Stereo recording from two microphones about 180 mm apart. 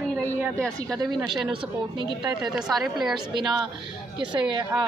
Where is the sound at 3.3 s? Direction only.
25° right (ahead or behind).